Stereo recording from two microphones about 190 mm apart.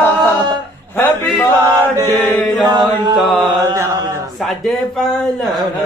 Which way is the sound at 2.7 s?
20° right (ahead or behind).